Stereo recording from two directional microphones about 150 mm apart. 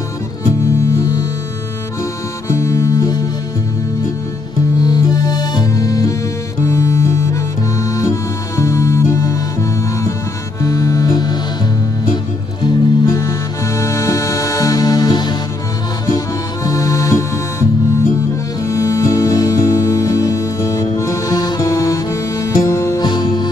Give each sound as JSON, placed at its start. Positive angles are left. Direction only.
{"t": 0.7, "sound": "music", "side_deg": 20}
{"t": 2.4, "sound": "music", "side_deg": 20}
{"t": 4.7, "sound": "music", "side_deg": 25}
{"t": 12.6, "sound": "music", "side_deg": 20}
{"t": 16.6, "sound": "music", "side_deg": 20}